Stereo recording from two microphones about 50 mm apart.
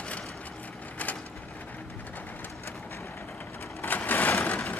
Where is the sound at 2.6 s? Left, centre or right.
Left.